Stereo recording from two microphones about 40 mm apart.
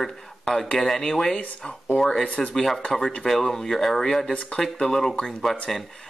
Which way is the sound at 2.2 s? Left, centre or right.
Left.